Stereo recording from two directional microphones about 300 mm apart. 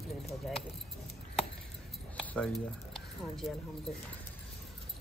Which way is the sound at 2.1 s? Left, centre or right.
Centre.